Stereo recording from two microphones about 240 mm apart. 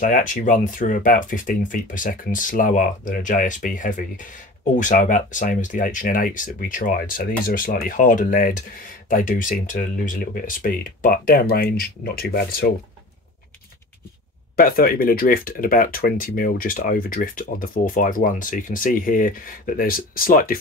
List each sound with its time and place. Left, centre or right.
0.0 s speech: left
14.6 s speech: left